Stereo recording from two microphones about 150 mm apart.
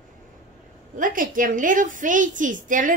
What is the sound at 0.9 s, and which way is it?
A woman's voice, 65° right (ahead or behind).